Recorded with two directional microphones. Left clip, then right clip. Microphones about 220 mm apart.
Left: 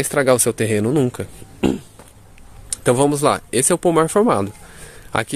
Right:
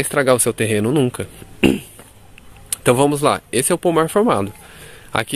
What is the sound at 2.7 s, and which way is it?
Speech, 5° right (ahead or behind).